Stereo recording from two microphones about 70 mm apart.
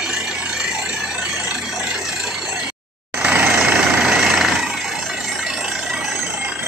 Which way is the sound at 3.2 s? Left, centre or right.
Right.